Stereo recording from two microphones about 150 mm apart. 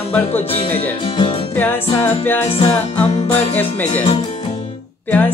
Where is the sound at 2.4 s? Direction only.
40° left (ahead or behind).